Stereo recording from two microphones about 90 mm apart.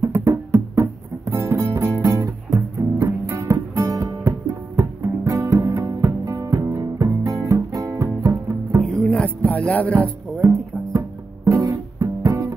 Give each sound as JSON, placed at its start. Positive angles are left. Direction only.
{"t": 0.0, "sound": "music", "side_deg": -30}
{"t": 8.8, "sound": "music", "side_deg": 5}
{"t": 10.4, "sound": "music", "side_deg": -35}